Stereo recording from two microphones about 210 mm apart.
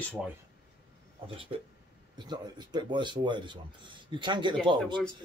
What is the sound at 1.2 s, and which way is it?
Speech, 25° right (ahead or behind).